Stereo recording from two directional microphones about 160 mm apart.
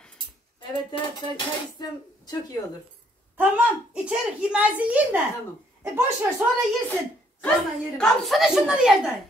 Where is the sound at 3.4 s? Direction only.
10° right (ahead or behind).